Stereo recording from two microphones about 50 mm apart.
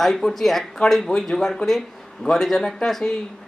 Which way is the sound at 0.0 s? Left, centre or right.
Centre.